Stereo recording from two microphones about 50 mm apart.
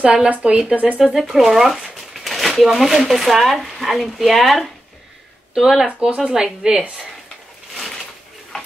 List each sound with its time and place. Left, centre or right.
0.0 s speech: centre
0.3 s speech: right
0.9 s speech: centre
5.9 s speech: right
7.7 s a sound: centre